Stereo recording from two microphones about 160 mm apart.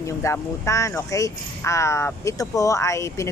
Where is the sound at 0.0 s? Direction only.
20° left (ahead or behind).